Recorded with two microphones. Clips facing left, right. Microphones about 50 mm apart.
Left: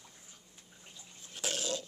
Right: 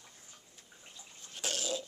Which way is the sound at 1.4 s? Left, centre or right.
Centre.